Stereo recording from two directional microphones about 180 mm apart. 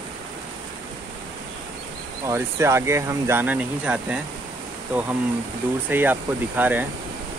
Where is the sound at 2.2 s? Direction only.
15° right (ahead or behind).